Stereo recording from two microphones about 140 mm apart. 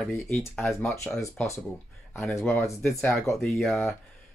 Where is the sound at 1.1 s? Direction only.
20° left (ahead or behind).